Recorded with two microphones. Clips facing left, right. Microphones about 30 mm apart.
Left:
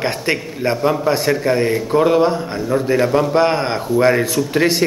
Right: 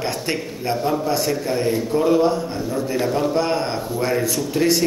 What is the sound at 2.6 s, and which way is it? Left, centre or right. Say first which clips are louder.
Speech: left 6 dB; left.